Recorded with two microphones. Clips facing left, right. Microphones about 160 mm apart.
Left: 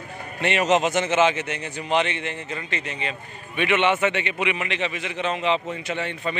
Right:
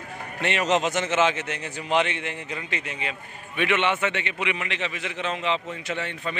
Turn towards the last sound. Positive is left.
turn(degrees=0)  # may be behind; listen again after turning